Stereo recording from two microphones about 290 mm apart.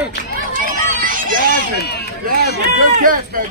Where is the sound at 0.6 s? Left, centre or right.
Right.